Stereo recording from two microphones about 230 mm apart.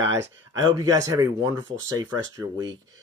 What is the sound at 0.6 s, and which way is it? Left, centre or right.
Speech, centre.